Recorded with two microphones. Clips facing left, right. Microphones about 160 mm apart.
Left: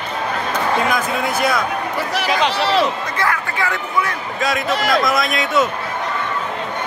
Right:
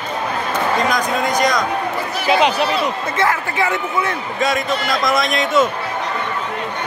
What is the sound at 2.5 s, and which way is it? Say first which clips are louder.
Speech: left 2 dB; 90° left.